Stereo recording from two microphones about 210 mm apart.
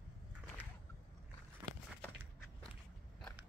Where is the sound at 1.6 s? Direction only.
10° right (ahead or behind).